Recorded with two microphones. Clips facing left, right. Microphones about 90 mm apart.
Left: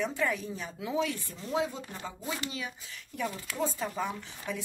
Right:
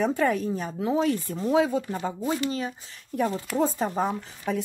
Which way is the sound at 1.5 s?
70° right (ahead or behind).